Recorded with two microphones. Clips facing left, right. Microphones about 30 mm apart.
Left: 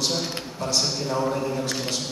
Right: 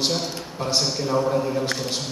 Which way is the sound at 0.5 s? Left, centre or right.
Right.